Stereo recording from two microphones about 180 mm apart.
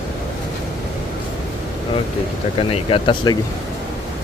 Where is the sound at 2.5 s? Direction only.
30° left (ahead or behind).